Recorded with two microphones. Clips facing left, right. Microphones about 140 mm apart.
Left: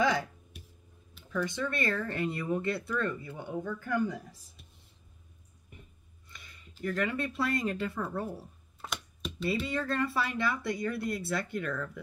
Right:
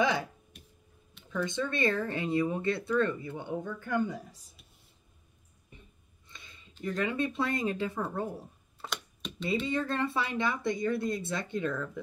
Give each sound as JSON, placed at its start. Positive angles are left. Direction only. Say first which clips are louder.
{"t": 1.3, "sound": "speech", "louder": "right 1 dB", "side_deg": -20}
{"t": 6.2, "sound": "a sound", "louder": "even", "side_deg": -20}
{"t": 6.8, "sound": "speech", "louder": "right 1 dB", "side_deg": -20}
{"t": 8.8, "sound": "computer keyboard", "louder": "left 1 dB", "side_deg": 0}
{"t": 9.7, "sound": "speech", "louder": "right 1 dB", "side_deg": -20}